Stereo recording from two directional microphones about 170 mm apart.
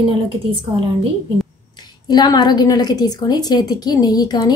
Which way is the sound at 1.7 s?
25° left (ahead or behind).